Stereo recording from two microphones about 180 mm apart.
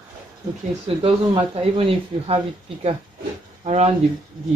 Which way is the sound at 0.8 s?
30° right (ahead or behind).